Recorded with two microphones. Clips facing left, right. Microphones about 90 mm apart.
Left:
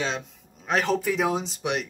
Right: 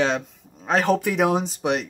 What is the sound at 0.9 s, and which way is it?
Speech, 60° right (ahead or behind).